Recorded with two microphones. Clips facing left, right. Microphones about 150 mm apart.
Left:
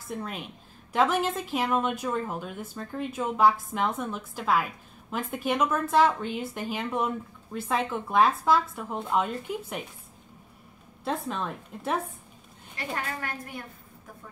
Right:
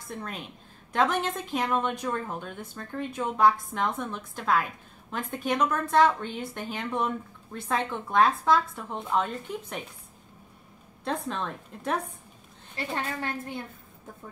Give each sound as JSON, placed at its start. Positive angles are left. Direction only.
{"t": 0.1, "sound": "a woman's voice", "side_deg": 5}
{"t": 11.1, "sound": "a woman's voice", "side_deg": 5}
{"t": 12.7, "sound": "a woman's voice", "side_deg": -25}